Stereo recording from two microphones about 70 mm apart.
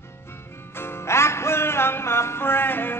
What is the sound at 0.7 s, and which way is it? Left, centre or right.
Music, left.